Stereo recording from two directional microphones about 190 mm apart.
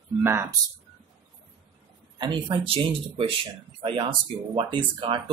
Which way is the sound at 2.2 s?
25° right (ahead or behind).